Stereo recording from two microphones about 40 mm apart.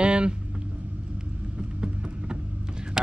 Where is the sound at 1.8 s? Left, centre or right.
Right.